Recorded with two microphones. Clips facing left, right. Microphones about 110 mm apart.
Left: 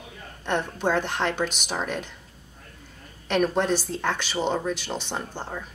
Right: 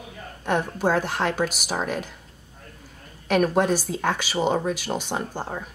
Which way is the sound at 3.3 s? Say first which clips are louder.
Right 2 dB; 5° right (ahead or behind).